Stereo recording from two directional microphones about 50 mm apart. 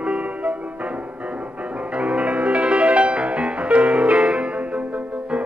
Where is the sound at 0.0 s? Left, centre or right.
Right.